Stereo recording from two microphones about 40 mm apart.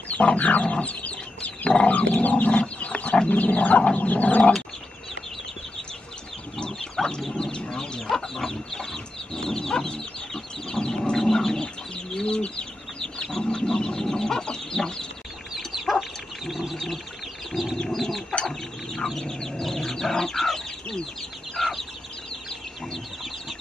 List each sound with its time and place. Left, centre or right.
0.1 s a sound: left
6.8 s chicken: centre
12.1 s bird: centre
13.0 s chicken: centre
15.5 s chicken: centre
17.5 s bird: centre
17.7 s chicken: centre